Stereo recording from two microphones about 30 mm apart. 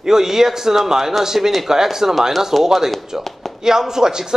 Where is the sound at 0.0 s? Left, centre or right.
Centre.